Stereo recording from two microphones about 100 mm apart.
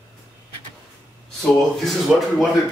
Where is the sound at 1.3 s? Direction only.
Centre (ahead or behind).